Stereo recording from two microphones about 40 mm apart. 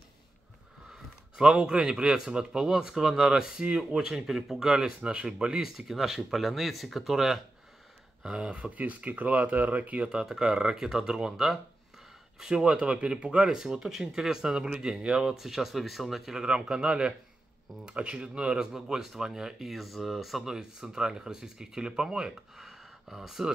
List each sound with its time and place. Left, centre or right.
1.3 s speech: right; by 7.4 s centre
8.2 s speech: right
10.0 s speech: centre
13.5 s speech: centre
16.3 s speech: centre
18.6 s speech: centre
19.7 s speech: centre
20.4 s speech: centre
22.6 s a sound: centre